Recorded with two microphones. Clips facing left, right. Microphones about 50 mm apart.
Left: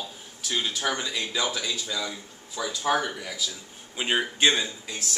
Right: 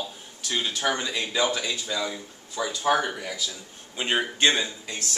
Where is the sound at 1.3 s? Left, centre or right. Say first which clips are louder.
Right 5 dB; centre.